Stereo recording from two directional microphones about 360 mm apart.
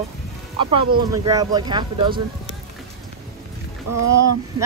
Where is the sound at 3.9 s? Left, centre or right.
Right.